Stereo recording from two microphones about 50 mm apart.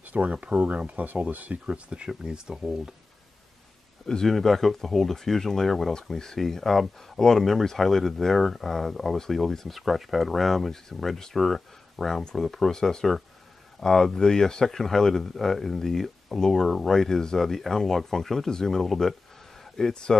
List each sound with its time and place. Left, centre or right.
0.0 s a sound: right
0.3 s speech: right
1.7 s speech: centre
4.0 s speech: centre
19.9 s speech: centre